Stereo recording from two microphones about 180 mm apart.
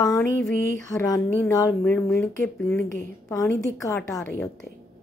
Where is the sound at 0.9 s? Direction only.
20° left (ahead or behind).